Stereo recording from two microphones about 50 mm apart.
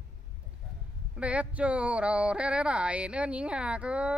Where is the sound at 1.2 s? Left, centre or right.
Right.